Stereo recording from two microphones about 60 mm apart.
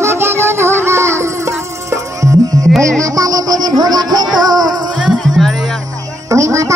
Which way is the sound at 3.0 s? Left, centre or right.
Right.